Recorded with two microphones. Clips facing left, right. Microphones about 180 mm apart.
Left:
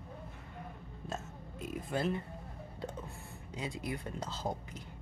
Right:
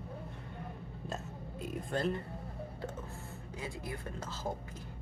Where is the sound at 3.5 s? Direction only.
20° left (ahead or behind).